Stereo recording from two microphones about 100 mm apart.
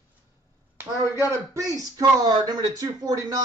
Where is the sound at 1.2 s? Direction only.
30° right (ahead or behind).